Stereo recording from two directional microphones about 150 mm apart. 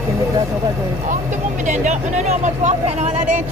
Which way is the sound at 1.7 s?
50° right (ahead or behind).